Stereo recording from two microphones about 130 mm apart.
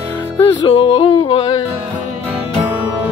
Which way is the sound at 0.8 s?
45° left (ahead or behind).